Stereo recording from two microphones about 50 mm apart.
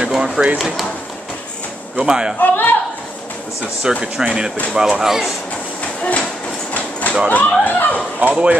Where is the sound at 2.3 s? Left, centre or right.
Left.